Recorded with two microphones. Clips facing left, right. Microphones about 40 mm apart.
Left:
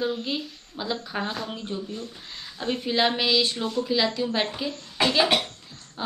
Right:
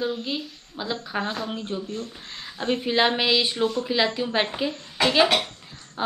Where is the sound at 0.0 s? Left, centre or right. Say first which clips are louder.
Even; centre.